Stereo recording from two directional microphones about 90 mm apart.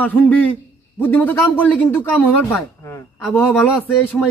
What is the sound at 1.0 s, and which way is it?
Speech, 20° left (ahead or behind).